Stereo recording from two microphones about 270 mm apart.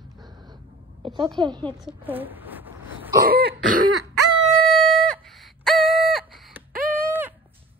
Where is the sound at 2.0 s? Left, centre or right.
Centre.